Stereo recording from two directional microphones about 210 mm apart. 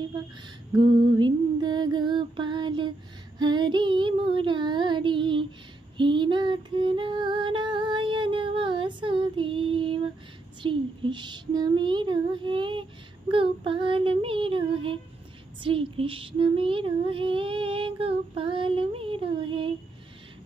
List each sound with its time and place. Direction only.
0.7 s mantra: 20° right (ahead or behind)
3.3 s child singing: 20° right (ahead or behind)
5.9 s female singing: 25° right (ahead or behind)
10.6 s child singing: 25° right (ahead or behind)